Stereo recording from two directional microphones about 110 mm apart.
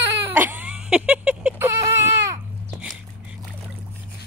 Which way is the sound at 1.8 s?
25° right (ahead or behind).